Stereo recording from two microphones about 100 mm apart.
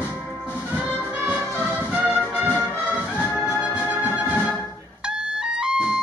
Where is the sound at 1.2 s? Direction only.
20° right (ahead or behind).